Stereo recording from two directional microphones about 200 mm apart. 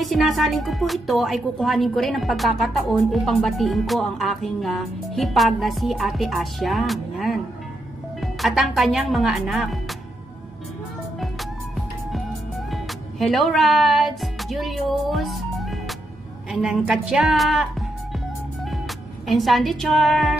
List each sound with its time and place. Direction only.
0.0 s speech: centre (ahead or behind)
12.7 s music: centre (ahead or behind)
16.6 s speech: centre (ahead or behind)
19.2 s speech: centre (ahead or behind)